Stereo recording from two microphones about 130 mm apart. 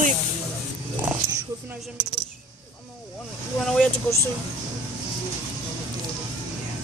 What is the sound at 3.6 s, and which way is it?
Speech, 5° left (ahead or behind).